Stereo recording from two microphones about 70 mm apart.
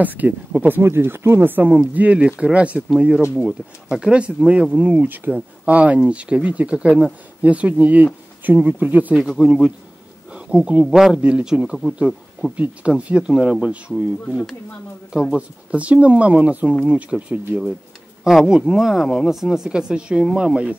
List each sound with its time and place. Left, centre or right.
0.0 s speech: right
9.1 s speech: centre
10.9 s a man's voice: centre
11.1 s speech: centre
12.1 s a sound: centre
12.5 s speech: centre
15.3 s speech: centre
18.2 s speech: centre